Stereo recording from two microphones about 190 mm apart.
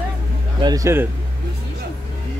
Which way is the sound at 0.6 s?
20° right (ahead or behind).